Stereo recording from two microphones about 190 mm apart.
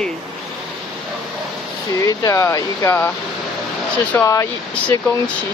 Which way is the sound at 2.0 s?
20° left (ahead or behind).